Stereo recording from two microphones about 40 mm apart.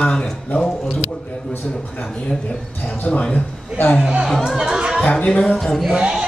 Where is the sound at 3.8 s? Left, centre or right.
Left.